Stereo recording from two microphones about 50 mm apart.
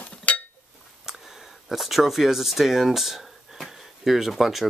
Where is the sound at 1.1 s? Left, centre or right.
Centre.